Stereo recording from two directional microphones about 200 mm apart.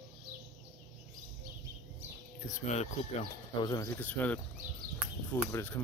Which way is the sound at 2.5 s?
35° left (ahead or behind).